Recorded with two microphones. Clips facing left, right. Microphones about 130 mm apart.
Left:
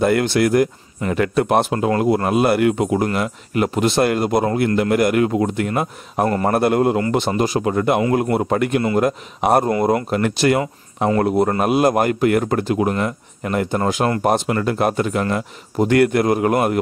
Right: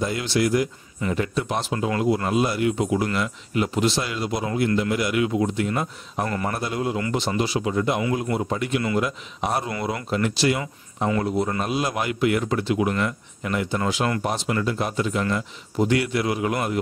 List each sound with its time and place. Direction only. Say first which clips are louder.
0.0 s speech: left 7 dB; 60° left (ahead or behind)
6.2 s a man's voice: left 8 dB; 35° left (ahead or behind)
6.5 s speech: left 10 dB; 55° left (ahead or behind)